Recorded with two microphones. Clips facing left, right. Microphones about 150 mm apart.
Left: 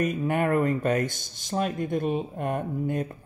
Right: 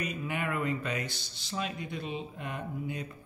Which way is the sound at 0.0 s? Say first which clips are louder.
Left 9 dB; 45° left (ahead or behind).